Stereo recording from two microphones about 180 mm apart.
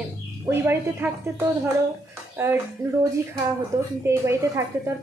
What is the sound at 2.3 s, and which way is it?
Speech, 15° right (ahead or behind).